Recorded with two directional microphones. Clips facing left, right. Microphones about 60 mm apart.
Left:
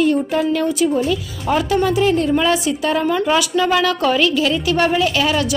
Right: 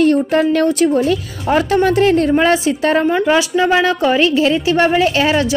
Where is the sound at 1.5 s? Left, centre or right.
Right.